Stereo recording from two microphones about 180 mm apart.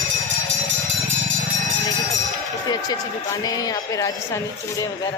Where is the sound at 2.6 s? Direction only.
20° left (ahead or behind).